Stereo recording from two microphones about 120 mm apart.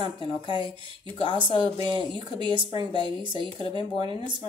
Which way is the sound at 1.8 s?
40° right (ahead or behind).